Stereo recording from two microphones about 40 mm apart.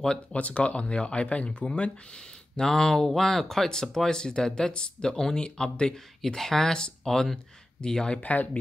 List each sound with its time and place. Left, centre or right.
0.3 s speech: left
2.1 s speech: centre
8.2 s speech: left